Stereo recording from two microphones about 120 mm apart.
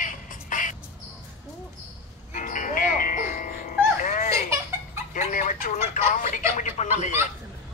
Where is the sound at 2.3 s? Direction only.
90° left.